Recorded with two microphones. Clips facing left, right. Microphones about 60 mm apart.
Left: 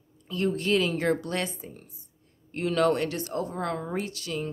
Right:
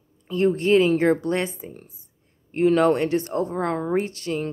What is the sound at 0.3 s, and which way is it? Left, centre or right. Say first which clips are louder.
A woman's voice: right 7 dB; right.